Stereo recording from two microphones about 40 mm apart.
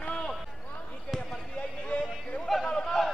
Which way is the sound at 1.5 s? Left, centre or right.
Left.